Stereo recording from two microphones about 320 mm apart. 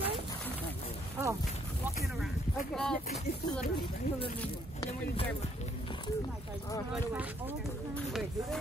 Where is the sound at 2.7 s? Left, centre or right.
Centre.